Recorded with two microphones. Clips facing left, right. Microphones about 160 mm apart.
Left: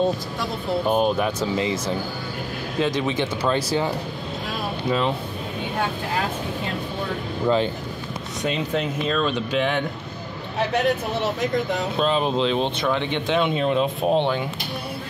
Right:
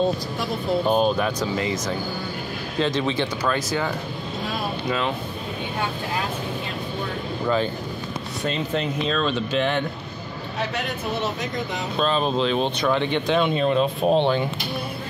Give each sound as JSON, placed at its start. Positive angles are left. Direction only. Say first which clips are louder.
{"t": 0.8, "sound": "speech", "louder": "left 1 dB", "side_deg": 10}
{"t": 1.4, "sound": "speech", "louder": "left 1 dB", "side_deg": 25}
{"t": 2.8, "sound": "speech", "louder": "even", "side_deg": 15}
{"t": 3.5, "sound": "speech", "louder": "left 2 dB", "side_deg": 30}
{"t": 7.4, "sound": "speech", "louder": "left 2 dB", "side_deg": 20}
{"t": 8.5, "sound": "speech", "louder": "left 1 dB", "side_deg": 5}
{"t": 12.0, "sound": "speech", "louder": "even", "side_deg": 15}
{"t": 12.5, "sound": "speech", "louder": "right 1 dB", "side_deg": -5}
{"t": 13.1, "sound": "speech", "louder": "right 1 dB", "side_deg": 15}